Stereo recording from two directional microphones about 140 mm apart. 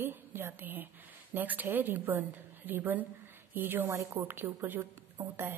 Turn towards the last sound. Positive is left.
turn(degrees=-15)  # may be behind; listen again after turning